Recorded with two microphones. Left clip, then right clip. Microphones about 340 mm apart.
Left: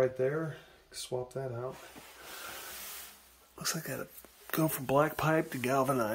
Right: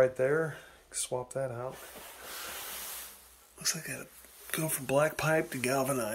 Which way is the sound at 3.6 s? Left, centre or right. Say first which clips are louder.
Right 1 dB; centre.